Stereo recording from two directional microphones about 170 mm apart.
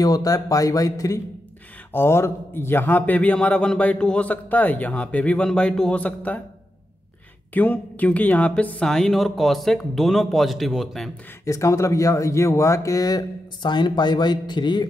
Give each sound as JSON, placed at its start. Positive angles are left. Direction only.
{"t": 0.0, "sound": "a man's voice", "side_deg": 20}
{"t": 7.5, "sound": "speech", "side_deg": 10}
{"t": 11.4, "sound": "speech", "side_deg": 20}